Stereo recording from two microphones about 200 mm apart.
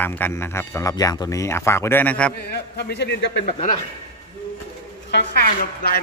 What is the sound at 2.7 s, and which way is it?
Speech, 55° left (ahead or behind).